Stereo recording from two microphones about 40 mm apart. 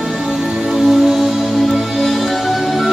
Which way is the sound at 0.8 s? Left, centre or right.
Centre.